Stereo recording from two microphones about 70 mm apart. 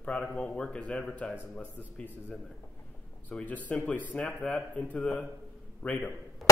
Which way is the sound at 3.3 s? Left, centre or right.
Centre.